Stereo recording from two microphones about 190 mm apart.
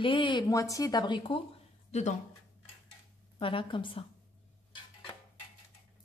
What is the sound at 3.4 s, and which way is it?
Speech, 25° left (ahead or behind).